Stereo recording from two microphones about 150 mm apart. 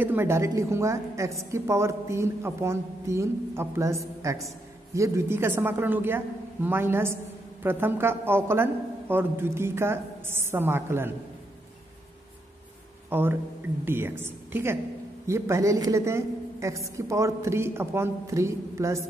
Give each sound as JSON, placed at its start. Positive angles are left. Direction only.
{"t": 0.0, "sound": "a woman's voice", "side_deg": -15}
{"t": 13.1, "sound": "a man's voice", "side_deg": -15}